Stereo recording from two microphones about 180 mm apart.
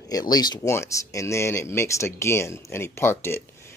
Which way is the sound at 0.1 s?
20° left (ahead or behind).